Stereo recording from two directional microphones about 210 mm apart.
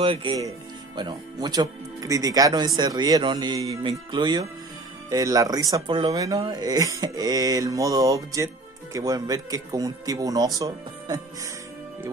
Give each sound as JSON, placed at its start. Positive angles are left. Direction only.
{"t": 0.0, "sound": "speech", "side_deg": -25}